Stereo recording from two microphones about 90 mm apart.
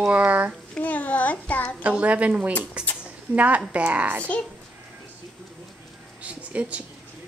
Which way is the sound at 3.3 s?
15° right (ahead or behind).